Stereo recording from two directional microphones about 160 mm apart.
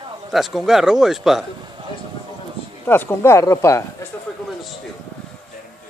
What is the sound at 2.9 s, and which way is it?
Speech, 15° left (ahead or behind).